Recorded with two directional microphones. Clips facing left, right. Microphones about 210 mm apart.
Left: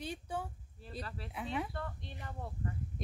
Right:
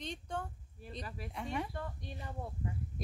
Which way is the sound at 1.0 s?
15° right (ahead or behind).